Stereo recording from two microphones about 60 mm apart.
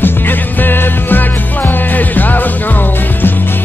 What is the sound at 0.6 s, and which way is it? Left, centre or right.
Music, left.